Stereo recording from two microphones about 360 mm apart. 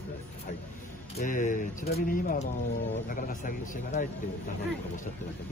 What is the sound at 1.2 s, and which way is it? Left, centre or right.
Speech, left.